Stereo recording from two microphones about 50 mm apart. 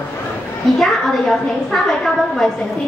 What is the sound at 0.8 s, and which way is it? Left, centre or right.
A woman's voice, centre.